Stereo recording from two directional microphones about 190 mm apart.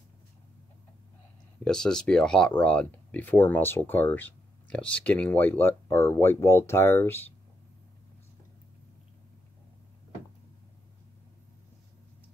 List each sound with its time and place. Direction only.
1.6 s speech: 5° left (ahead or behind)